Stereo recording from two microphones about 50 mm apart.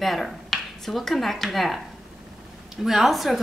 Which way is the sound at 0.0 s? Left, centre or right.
Centre.